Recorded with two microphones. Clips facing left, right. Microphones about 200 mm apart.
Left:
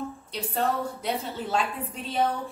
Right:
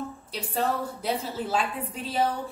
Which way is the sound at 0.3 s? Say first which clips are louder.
Even; 5° right (ahead or behind).